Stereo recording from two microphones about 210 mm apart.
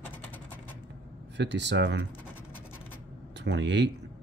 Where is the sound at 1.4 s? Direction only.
55° right (ahead or behind).